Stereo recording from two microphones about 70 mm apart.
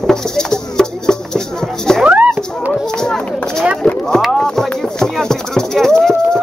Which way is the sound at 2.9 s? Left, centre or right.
Centre.